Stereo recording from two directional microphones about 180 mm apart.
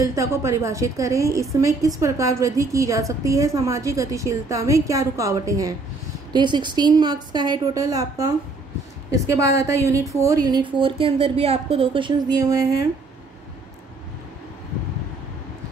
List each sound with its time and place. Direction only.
0.0 s a woman's voice: 15° right (ahead or behind)